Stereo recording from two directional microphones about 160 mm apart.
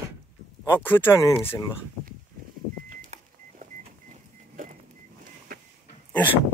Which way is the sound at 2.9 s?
55° right (ahead or behind).